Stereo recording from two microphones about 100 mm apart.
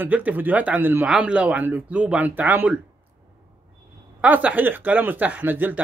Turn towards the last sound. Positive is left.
turn(degrees=-20)  # may be behind; listen again after turning